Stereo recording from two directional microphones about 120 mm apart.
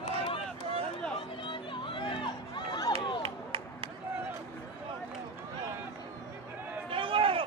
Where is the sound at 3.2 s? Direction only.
50° right (ahead or behind).